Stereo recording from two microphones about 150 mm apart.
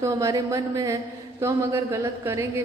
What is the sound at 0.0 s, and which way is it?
A woman's voice, 20° right (ahead or behind).